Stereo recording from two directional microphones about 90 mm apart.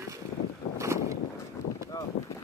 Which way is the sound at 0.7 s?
35° right (ahead or behind).